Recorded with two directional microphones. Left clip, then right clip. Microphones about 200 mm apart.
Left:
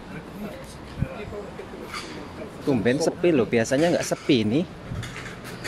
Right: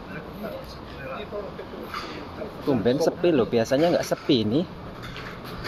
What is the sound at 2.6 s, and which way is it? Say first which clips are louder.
Speech: even; 25° left (ahead or behind).